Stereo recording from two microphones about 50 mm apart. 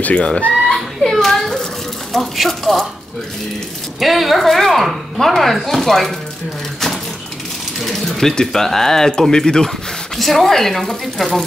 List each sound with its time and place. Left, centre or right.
0.0 s speech: left
0.7 s a sound: centre
2.1 s speech: centre
4.0 s speech: centre
7.8 s speech: centre